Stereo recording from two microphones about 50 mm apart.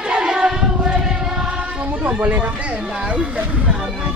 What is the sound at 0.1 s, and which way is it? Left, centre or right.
Choir, centre.